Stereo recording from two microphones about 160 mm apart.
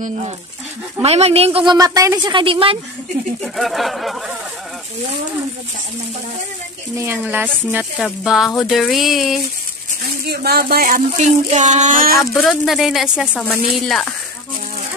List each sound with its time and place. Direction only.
1.0 s a woman's voice: 40° right (ahead or behind)
3.5 s speech: centre (ahead or behind)
7.0 s speech: 15° right (ahead or behind)
10.2 s speech: 75° right (ahead or behind); by 12.2 s 60° right (ahead or behind)
12.4 s speech: centre (ahead or behind)
13.3 s speech: 10° left (ahead or behind)